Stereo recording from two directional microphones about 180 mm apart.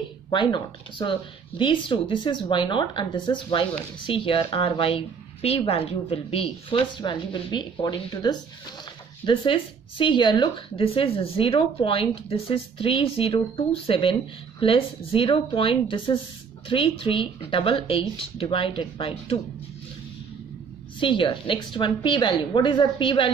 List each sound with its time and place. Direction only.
0.3 s a woman's voice: 25° left (ahead or behind)
21.0 s speech: 30° left (ahead or behind)